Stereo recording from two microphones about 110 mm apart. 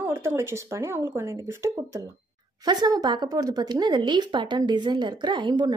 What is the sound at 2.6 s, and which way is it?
Speech, 40° right (ahead or behind).